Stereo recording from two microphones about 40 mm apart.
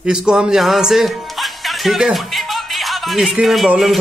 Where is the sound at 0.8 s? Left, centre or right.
Centre.